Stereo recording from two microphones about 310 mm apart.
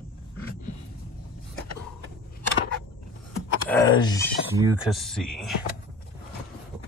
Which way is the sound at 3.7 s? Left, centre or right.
Centre.